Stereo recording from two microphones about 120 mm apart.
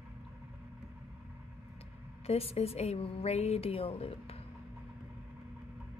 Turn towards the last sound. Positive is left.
turn(degrees=55)  # may be behind; listen again after turning